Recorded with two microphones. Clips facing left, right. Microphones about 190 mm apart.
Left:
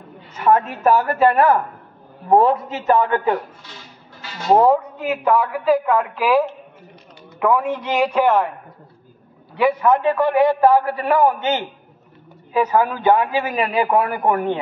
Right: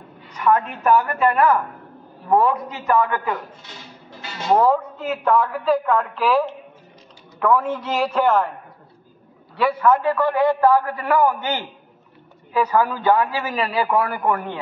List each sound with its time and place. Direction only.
0.3 s a woman's voice: 25° left (ahead or behind)
4.5 s a man's voice: 20° left (ahead or behind)
9.6 s a man's voice: 15° left (ahead or behind)